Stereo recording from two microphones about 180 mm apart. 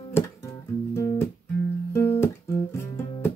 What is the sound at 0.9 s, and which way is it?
Music, 15° left (ahead or behind).